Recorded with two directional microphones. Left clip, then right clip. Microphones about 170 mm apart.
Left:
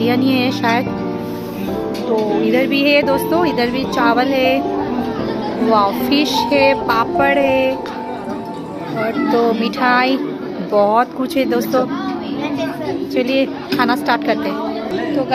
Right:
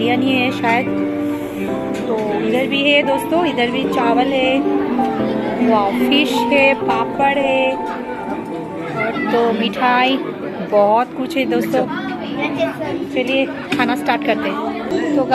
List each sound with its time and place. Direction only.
0.1 s speech: 10° left (ahead or behind)
2.5 s speech: 15° left (ahead or behind)
4.0 s speech: 15° left (ahead or behind)
5.7 s speech: 15° left (ahead or behind)
7.0 s music: 20° left (ahead or behind)
7.3 s music: 90° left
9.6 s speech: 10° left (ahead or behind)
13.1 s music: 25° left (ahead or behind)
13.7 s speech: 5° left (ahead or behind)